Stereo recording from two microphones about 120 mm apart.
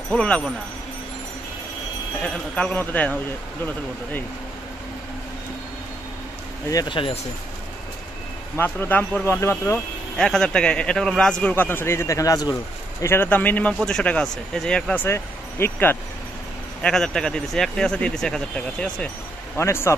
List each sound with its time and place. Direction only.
0.1 s a man's voice: 5° left (ahead or behind)
2.2 s a man's voice: 10° left (ahead or behind)
6.9 s speech: 45° left (ahead or behind)
8.5 s a man's voice: 15° left (ahead or behind)
10.1 s a man's voice: 5° left (ahead or behind); by 12.5 s 30° left (ahead or behind)
13.0 s a man's voice: 20° left (ahead or behind)
15.0 s speech: 20° left (ahead or behind)
16.8 s speech: 5° left (ahead or behind)
19.5 s a man's voice: 20° left (ahead or behind)